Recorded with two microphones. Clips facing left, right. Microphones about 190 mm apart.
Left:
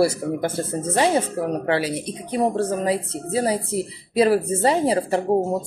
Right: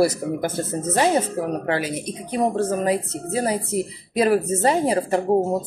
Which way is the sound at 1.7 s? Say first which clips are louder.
Left 2 dB; 30° left (ahead or behind).